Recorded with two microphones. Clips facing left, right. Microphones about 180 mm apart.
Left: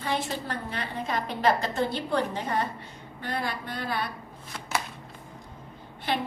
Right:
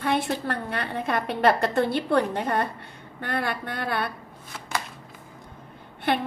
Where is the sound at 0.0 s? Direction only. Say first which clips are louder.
Right 5 dB; 60° right (ahead or behind).